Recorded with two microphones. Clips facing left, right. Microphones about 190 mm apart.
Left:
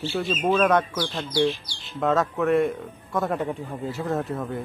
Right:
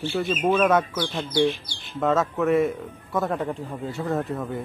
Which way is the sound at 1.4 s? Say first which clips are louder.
Right 1 dB; 55° right (ahead or behind).